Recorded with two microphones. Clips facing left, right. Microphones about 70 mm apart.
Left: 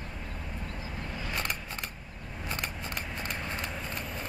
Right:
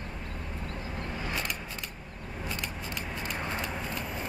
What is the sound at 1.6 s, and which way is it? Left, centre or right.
Vehicle, left.